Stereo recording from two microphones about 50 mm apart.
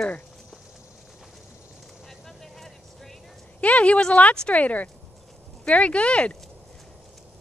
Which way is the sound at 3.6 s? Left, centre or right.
Left.